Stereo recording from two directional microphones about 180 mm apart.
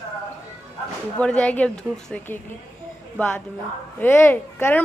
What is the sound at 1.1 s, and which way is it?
A woman's voice, 5° left (ahead or behind).